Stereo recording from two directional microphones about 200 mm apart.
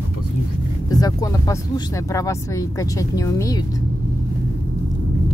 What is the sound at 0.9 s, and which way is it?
Speech, 20° left (ahead or behind).